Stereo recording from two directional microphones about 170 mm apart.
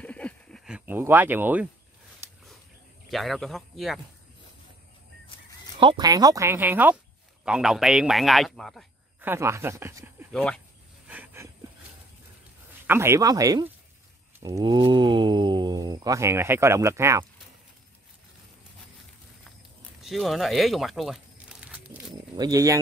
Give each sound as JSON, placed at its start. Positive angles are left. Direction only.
{"t": 0.0, "sound": "a sound", "side_deg": 10}
{"t": 0.7, "sound": "speech", "side_deg": -10}
{"t": 3.1, "sound": "a man's voice", "side_deg": 0}
{"t": 5.8, "sound": "a man's voice", "side_deg": -25}
{"t": 9.2, "sound": "speech", "side_deg": -15}
{"t": 10.3, "sound": "a man's voice", "side_deg": 5}
{"t": 11.1, "sound": "a sound", "side_deg": -15}
{"t": 12.8, "sound": "speech", "side_deg": -15}
{"t": 20.0, "sound": "crumpling", "side_deg": 0}
{"t": 22.3, "sound": "speech", "side_deg": -20}